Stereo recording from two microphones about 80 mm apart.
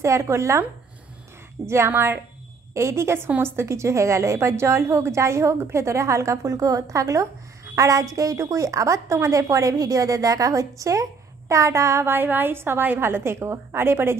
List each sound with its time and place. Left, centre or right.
0.0 s a woman's voice: right
1.7 s a woman's voice: right